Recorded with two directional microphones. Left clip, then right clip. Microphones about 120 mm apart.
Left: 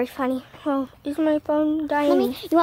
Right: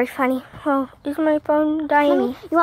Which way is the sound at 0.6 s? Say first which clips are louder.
Right 4 dB; centre (ahead or behind).